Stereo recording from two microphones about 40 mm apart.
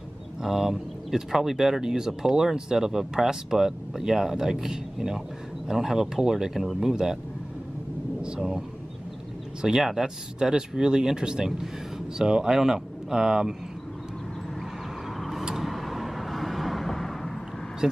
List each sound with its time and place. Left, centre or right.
0.4 s speech: centre
8.4 s speech: centre
15.1 s vehicle: centre